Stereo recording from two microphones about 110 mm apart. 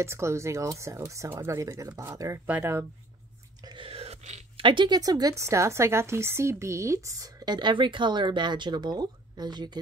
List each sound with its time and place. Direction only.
0.0 s speech: 25° right (ahead or behind)
2.4 s speech: 20° right (ahead or behind)
3.6 s chewing: 55° right (ahead or behind); by 4.4 s 80° right
4.6 s speech: 50° right (ahead or behind)